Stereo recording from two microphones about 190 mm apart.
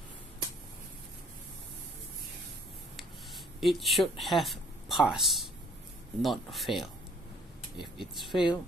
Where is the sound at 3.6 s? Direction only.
Centre (ahead or behind).